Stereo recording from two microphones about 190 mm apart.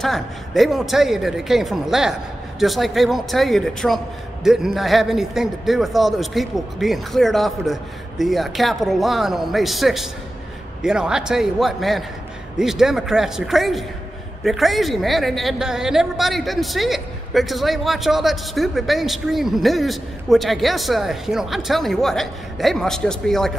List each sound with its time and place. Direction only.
0.0 s a woman's voice: centre (ahead or behind)